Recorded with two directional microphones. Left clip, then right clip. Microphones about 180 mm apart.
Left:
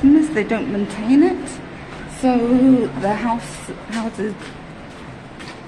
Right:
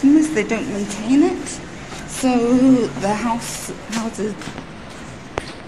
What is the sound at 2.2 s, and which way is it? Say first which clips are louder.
Speech: even; 10° left (ahead or behind).